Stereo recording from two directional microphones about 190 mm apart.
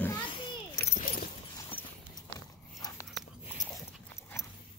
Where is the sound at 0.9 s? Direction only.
45° left (ahead or behind).